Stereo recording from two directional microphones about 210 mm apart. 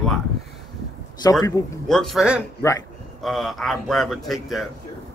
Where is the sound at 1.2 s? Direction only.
15° left (ahead or behind).